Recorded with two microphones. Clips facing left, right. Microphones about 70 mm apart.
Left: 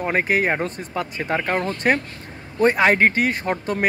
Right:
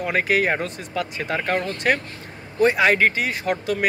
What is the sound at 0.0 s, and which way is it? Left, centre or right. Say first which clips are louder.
Speech: even; left.